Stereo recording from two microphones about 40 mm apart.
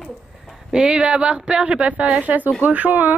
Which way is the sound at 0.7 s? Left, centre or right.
Centre.